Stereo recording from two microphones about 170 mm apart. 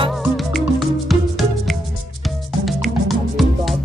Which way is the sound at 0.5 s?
Centre (ahead or behind).